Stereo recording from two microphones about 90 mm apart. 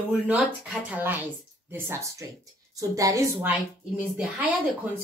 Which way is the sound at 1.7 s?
25° right (ahead or behind).